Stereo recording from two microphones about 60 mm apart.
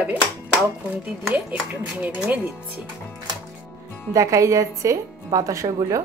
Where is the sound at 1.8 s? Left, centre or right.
Right.